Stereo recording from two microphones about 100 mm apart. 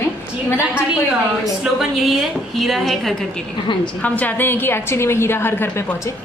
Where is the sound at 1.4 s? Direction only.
5° right (ahead or behind).